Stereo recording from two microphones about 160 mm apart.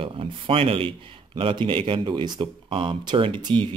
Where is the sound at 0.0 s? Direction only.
35° right (ahead or behind).